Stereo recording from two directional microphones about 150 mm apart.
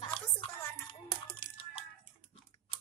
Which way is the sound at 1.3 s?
35° left (ahead or behind).